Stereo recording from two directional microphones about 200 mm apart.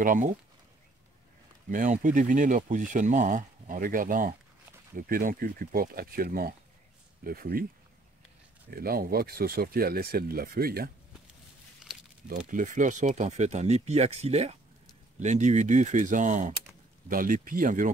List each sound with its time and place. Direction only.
0.0 s speech: 40° right (ahead or behind)
1.7 s speech: 40° right (ahead or behind)
8.6 s speech: 50° right (ahead or behind)
11.8 s a sound: 5° right (ahead or behind)
12.3 s speech: 40° right (ahead or behind)